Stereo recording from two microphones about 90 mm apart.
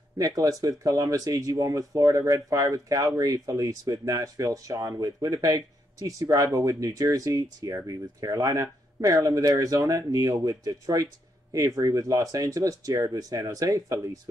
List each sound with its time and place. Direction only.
0.2 s speech: 40° right (ahead or behind)